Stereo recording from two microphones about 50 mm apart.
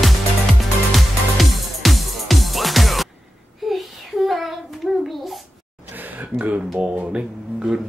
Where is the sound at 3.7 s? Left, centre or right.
Centre.